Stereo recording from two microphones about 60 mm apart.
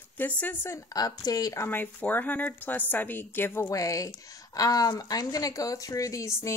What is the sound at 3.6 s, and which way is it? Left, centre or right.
Speech, left.